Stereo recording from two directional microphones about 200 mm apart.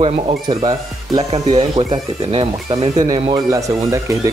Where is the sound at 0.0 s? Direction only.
25° right (ahead or behind).